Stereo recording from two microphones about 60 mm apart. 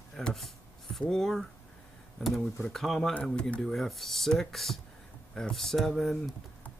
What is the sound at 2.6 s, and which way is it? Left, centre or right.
Speech, centre.